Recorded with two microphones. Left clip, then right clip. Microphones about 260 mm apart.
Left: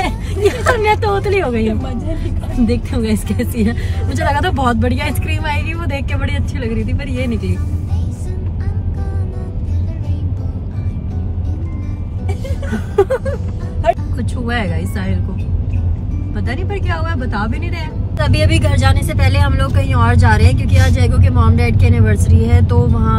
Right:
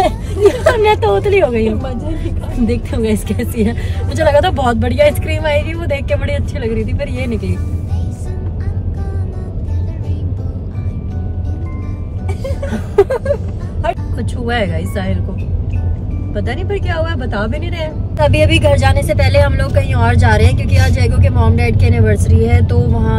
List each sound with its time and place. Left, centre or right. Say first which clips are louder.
0.0 s speech: right 5 dB; centre
6.9 s speech: right 4 dB; left
12.4 s music: right 5 dB; centre
13.8 s speech: left 3 dB; centre
16.3 s speech: right 4 dB; centre